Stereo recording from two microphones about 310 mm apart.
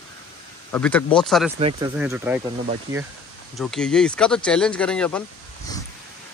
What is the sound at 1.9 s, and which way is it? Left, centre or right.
Speech, centre.